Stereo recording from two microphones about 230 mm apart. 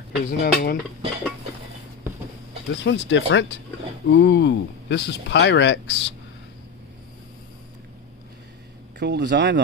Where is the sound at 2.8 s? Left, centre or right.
Left.